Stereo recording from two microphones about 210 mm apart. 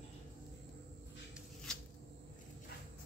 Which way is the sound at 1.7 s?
5° left (ahead or behind).